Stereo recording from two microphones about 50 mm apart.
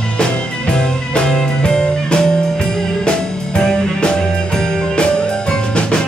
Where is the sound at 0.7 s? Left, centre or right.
Centre.